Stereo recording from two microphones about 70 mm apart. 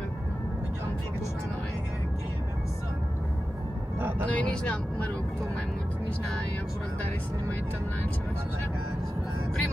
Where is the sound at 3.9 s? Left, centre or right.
Right.